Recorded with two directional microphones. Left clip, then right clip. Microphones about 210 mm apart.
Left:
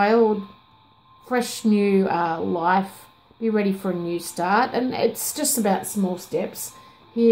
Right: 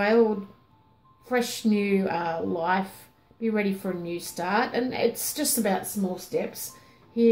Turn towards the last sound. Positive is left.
turn(degrees=35)  # may be behind; listen again after turning